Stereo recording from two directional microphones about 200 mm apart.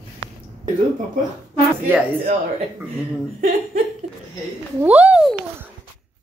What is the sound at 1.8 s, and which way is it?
Speech, 10° right (ahead or behind).